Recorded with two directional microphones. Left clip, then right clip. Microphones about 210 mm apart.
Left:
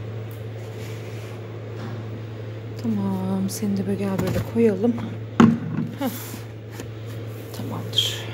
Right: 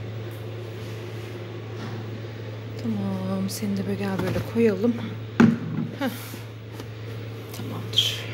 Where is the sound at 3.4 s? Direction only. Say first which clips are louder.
Left 2 dB; 15° left (ahead or behind).